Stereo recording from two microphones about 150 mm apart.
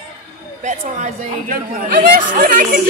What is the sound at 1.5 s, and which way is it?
Speech, 75° right (ahead or behind).